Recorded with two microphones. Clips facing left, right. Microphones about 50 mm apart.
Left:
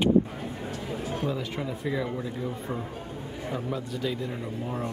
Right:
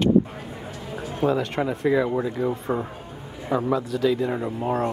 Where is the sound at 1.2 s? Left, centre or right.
Right.